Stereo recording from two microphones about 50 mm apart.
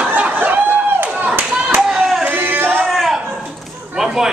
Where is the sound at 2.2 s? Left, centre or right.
Right.